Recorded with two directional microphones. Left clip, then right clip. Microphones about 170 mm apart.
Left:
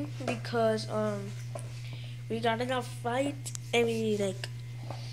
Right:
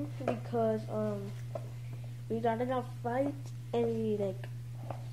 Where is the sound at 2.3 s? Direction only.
15° right (ahead or behind).